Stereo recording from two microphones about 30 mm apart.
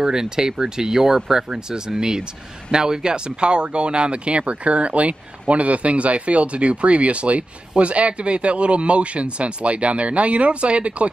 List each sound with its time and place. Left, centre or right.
0.0 s speech: right